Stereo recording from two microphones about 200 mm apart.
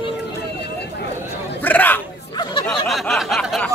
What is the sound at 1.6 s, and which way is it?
Speech, 10° left (ahead or behind).